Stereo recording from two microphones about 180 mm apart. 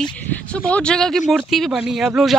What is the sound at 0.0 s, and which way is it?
A man's voice, 5° left (ahead or behind).